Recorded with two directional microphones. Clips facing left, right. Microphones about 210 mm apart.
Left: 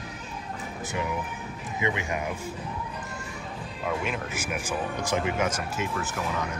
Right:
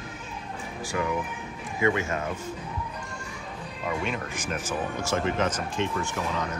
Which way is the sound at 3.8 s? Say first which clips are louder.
Even; centre (ahead or behind).